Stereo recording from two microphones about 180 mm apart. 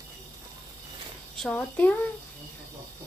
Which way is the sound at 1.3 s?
Centre (ahead or behind).